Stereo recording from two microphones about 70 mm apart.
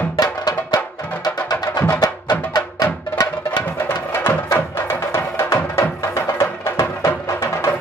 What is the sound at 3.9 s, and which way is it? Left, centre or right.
Music, left.